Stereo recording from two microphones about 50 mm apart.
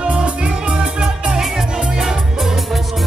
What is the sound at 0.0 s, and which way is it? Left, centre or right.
Music, right.